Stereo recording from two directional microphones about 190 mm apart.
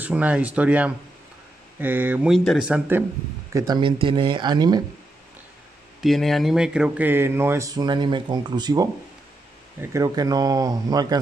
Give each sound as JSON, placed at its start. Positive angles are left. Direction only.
{"t": 0.0, "sound": "speech", "side_deg": -10}
{"t": 3.5, "sound": "speech", "side_deg": -20}
{"t": 5.9, "sound": "speech", "side_deg": 0}